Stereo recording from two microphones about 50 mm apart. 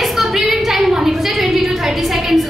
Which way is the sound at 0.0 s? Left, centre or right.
Centre.